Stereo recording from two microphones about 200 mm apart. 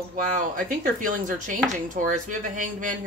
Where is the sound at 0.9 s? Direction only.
40° right (ahead or behind).